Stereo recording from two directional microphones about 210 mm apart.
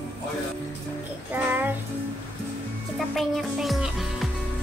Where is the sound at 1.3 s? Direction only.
10° right (ahead or behind).